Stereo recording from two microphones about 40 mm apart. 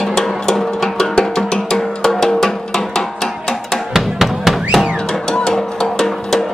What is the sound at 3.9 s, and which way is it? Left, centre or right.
Music, centre.